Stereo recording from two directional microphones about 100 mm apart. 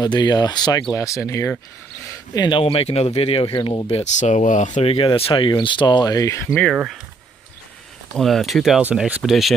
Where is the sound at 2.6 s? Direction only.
75° left (ahead or behind).